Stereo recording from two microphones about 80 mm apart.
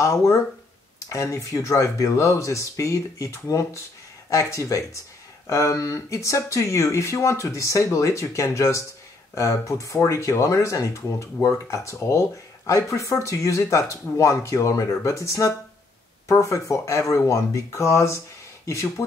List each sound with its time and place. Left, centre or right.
0.0 s speech: left